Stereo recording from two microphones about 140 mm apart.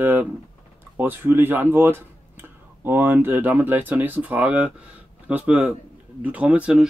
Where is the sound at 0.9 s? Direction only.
15° right (ahead or behind).